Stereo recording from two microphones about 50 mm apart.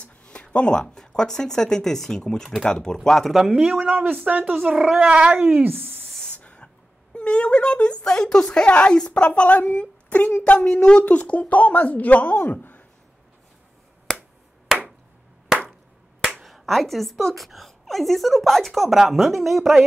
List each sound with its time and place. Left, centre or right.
0.0 s speech: left; by 3.3 s centre
3.7 s speech: right
4.7 s speech: centre
5.0 s dog: right
5.4 s speech: right
6.2 s a sound: left
7.2 s speech: left
8.6 s speech: left
16.2 s finger snapping: centre
16.4 s a woman's voice: centre